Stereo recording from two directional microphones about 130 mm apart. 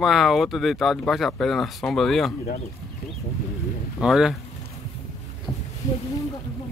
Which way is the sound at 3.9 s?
5° right (ahead or behind).